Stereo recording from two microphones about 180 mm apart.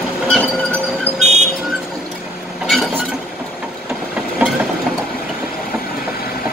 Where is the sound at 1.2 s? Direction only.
40° right (ahead or behind).